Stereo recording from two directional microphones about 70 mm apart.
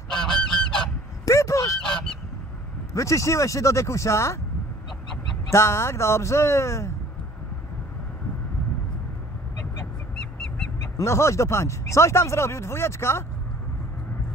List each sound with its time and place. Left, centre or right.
0.2 s goose: centre
1.2 s honk: left
2.9 s speech: left
5.5 s speech: left
11.0 s speech: left